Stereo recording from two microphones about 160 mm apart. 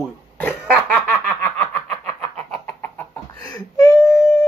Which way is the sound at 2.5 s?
10° left (ahead or behind).